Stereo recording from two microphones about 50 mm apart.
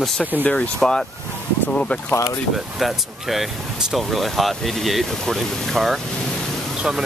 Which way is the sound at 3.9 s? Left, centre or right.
Centre.